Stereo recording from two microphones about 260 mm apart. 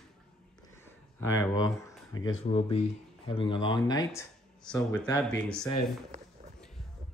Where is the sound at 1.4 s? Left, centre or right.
Centre.